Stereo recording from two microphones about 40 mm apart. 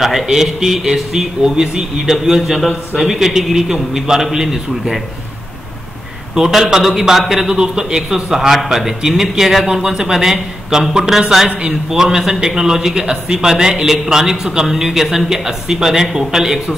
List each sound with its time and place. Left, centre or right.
0.0 s a man's voice: centre
6.3 s a man's voice: centre